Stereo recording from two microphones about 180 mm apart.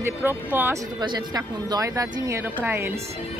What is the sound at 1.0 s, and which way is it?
A woman's voice, 20° right (ahead or behind).